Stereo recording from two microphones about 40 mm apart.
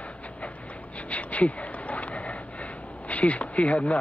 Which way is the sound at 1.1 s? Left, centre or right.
Left.